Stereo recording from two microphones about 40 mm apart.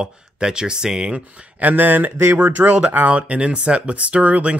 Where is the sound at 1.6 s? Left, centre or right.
Right.